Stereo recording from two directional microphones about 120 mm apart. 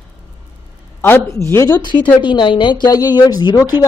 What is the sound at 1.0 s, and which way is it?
Speech, 20° left (ahead or behind).